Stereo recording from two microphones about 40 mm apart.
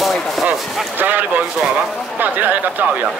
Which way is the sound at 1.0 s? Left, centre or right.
Right.